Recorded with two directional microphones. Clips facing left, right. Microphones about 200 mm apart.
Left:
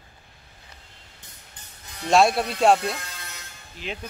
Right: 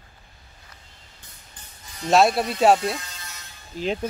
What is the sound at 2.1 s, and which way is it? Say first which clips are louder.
Speech: right 1 dB; centre (ahead or behind).